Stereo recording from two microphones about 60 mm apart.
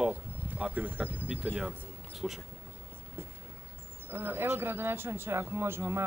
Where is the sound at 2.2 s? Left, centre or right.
Centre.